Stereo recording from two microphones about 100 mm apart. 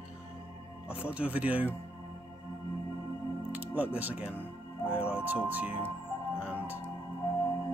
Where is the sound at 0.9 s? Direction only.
10° right (ahead or behind).